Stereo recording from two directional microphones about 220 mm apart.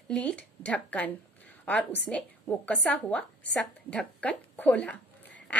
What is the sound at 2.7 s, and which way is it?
Speech, 5° left (ahead or behind).